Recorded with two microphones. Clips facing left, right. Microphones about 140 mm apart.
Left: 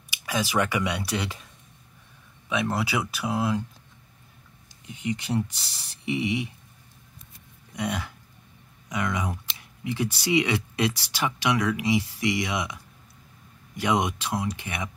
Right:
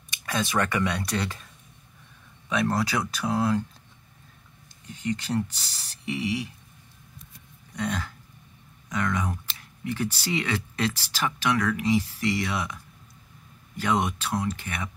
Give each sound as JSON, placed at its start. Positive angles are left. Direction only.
{"t": 0.1, "sound": "speech", "side_deg": 10}
{"t": 2.5, "sound": "speech", "side_deg": 10}
{"t": 4.8, "sound": "speech", "side_deg": 10}
{"t": 7.7, "sound": "a sound", "side_deg": 15}
{"t": 8.8, "sound": "speech", "side_deg": 15}